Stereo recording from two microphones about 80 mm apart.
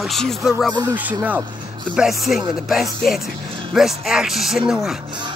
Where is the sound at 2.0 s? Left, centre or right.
Centre.